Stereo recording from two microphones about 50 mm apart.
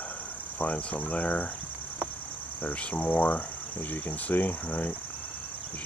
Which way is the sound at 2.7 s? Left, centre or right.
Left.